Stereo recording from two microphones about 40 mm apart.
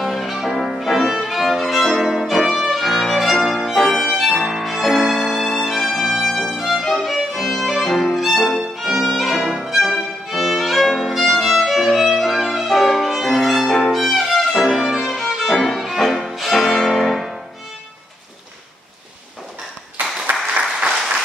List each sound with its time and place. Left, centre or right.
0.0 s violin: centre
2.0 s music: centre
2.7 s violin: centre
3.5 s music: centre
9.8 s violin: centre
11.0 s violin: centre
13.7 s violin: centre
13.9 s violin: centre
16.9 s music: centre
20.3 s applause: right